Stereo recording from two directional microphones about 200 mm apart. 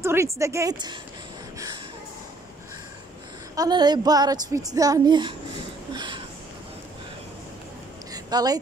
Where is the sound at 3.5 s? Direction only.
20° right (ahead or behind).